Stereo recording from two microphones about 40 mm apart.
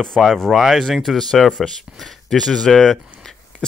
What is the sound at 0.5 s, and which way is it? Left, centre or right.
Speech, centre.